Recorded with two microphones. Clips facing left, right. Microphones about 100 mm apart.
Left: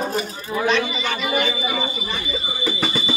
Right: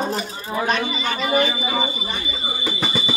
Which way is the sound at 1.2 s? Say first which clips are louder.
Right 4 dB; 35° right (ahead or behind).